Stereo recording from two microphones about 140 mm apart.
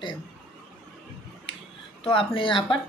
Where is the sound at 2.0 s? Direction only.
40° left (ahead or behind).